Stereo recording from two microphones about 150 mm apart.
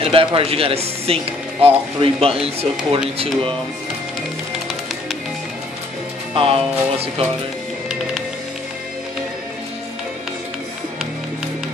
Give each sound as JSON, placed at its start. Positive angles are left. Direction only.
{"t": 0.0, "sound": "speech", "side_deg": -40}
{"t": 6.3, "sound": "speech", "side_deg": -40}